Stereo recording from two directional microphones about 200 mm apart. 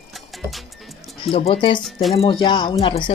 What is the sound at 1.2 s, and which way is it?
Speech, 25° left (ahead or behind).